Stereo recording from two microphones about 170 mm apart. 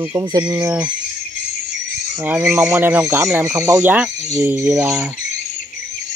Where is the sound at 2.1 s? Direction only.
10° right (ahead or behind).